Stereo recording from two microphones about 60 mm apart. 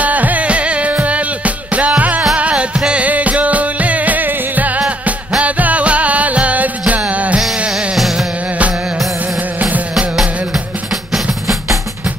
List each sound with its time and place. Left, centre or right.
0.0 s music: right
7.7 s music: centre
9.6 s music: right